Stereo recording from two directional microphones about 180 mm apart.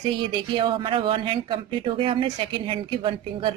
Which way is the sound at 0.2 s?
25° right (ahead or behind).